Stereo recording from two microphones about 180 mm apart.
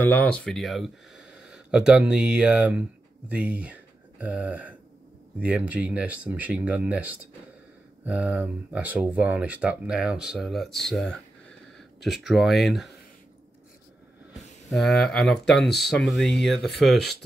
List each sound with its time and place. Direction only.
0.1 s speech: 10° left (ahead or behind)
14.7 s speech: centre (ahead or behind)